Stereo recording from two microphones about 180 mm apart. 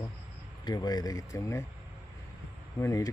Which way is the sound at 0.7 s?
20° left (ahead or behind).